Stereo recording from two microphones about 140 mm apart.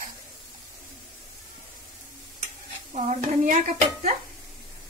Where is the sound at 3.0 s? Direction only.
70° right (ahead or behind).